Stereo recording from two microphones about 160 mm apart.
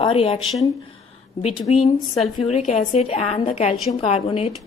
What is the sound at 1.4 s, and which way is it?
A woman's voice, 40° left (ahead or behind).